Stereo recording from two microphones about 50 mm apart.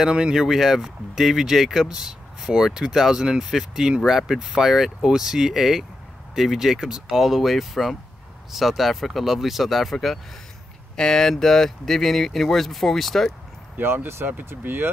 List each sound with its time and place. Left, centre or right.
0.1 s speech: centre
13.7 s speech: right